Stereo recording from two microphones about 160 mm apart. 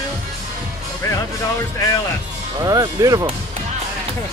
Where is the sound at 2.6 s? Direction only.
25° right (ahead or behind).